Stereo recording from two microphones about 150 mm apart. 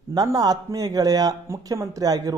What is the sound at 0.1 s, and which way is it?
Speech, 25° right (ahead or behind).